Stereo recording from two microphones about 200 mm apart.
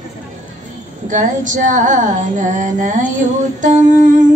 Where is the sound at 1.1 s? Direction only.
40° right (ahead or behind).